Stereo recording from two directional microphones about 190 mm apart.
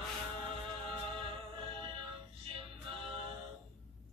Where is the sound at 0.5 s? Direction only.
30° right (ahead or behind).